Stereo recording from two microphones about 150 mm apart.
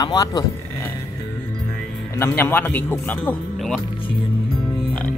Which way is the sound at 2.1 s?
15° left (ahead or behind).